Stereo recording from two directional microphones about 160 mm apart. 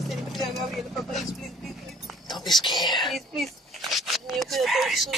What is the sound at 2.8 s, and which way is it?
Speech, 25° left (ahead or behind).